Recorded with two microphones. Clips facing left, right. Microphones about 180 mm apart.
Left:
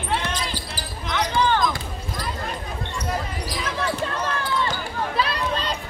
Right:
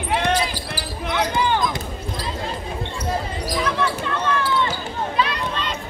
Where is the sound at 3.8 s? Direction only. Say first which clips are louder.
Right 2 dB; 35° left (ahead or behind).